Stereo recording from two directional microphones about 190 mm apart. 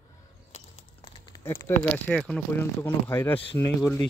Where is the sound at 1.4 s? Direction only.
15° left (ahead or behind).